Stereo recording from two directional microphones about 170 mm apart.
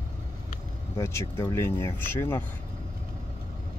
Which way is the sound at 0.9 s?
15° left (ahead or behind).